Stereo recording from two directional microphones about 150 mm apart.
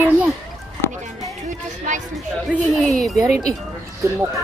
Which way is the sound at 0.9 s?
55° right (ahead or behind).